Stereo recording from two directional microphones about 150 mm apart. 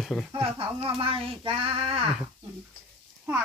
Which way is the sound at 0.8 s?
40° right (ahead or behind).